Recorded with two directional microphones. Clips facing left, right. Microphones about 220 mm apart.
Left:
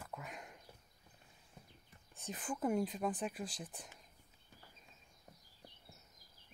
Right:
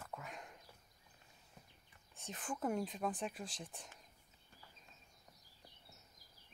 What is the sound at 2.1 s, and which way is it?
Speech, centre (ahead or behind).